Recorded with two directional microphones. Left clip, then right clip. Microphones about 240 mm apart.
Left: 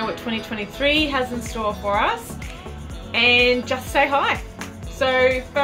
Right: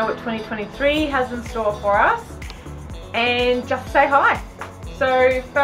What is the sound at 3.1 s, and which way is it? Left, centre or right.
A woman's voice, centre.